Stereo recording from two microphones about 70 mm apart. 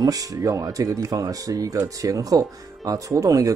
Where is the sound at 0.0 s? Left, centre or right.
Right.